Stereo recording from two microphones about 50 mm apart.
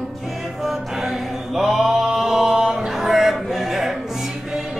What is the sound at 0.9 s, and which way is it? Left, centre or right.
Chant, centre.